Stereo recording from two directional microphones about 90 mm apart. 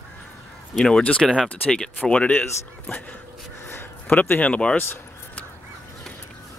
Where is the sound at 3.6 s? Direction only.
25° left (ahead or behind).